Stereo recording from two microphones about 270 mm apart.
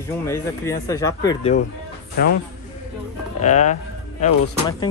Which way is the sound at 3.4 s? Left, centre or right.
Left.